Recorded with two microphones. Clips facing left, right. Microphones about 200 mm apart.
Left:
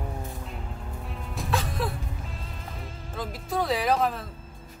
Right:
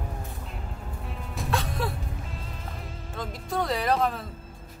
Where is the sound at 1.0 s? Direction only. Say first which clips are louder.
Right 1 dB; centre (ahead or behind).